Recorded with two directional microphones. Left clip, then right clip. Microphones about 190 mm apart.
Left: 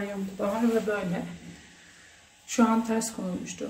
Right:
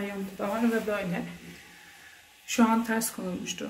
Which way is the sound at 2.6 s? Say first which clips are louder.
Left 1 dB; centre (ahead or behind).